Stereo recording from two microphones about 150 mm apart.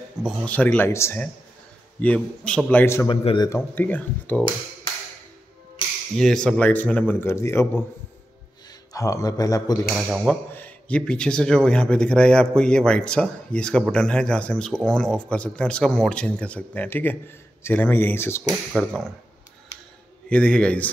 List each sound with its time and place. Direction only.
0.2 s speech: centre (ahead or behind)
0.5 s a man's voice: 10° left (ahead or behind)
3.1 s speech: 35° left (ahead or behind)
3.4 s a man's voice: 15° left (ahead or behind)
6.1 s a man's voice: 5° left (ahead or behind)
8.9 s a man's voice: 20° left (ahead or behind)
10.5 s a man's voice: 10° left (ahead or behind)
18.5 s speech: centre (ahead or behind)
20.2 s a man's voice: 5° left (ahead or behind)